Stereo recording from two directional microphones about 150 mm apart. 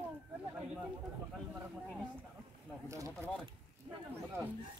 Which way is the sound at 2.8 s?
20° right (ahead or behind).